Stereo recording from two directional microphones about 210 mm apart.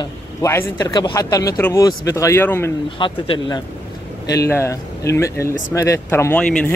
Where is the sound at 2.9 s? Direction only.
25° left (ahead or behind).